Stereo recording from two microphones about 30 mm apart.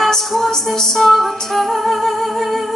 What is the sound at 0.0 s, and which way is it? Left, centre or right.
Music, centre.